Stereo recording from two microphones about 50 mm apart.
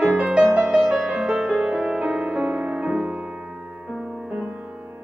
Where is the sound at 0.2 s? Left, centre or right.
Centre; by 3.2 s right.